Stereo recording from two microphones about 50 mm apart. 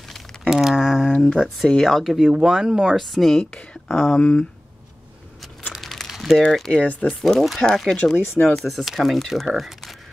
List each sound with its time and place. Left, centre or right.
0.4 s a sound: centre
1.1 s a sound: centre
1.7 s speech: centre
2.2 s speech: centre
3.0 s speech: centre
3.7 s a sound: centre
4.2 s speech: left
5.8 s crumpling: centre
6.8 s speech: left
7.1 s speech: centre
7.9 s speech: centre
8.5 s speech: centre